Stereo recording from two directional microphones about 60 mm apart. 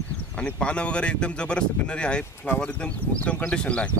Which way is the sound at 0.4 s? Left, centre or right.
Centre.